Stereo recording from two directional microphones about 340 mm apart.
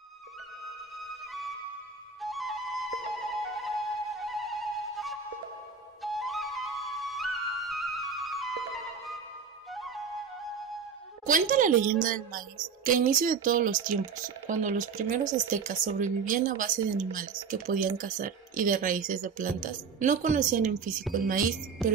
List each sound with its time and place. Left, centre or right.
2.2 s flute: centre
8.7 s music: centre
9.8 s flute: centre
11.2 s speech: right